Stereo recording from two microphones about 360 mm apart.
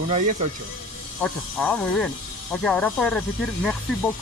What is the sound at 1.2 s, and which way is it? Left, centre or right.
Speech, centre.